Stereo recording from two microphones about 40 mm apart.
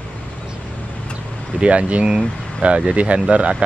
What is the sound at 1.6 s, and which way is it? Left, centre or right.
Speech, right.